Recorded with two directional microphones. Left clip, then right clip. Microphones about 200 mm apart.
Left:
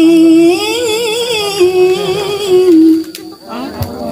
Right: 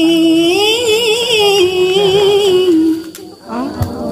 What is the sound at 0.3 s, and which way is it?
Music, 20° left (ahead or behind).